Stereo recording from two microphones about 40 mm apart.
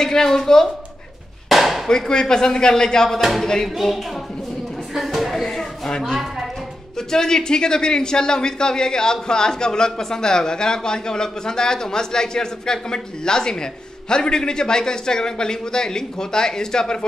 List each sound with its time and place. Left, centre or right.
0.0 s speech: centre
1.5 s chop: centre
1.9 s speech: centre
3.2 s a woman's voice: centre
4.9 s a sound: centre
5.3 s a sound: centre
7.0 s speech: centre